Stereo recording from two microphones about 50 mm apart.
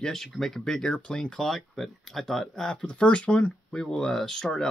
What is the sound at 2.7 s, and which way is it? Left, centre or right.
Speech, left.